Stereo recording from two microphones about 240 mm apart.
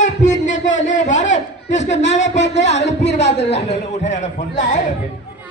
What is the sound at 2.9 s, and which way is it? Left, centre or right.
A man's voice, left.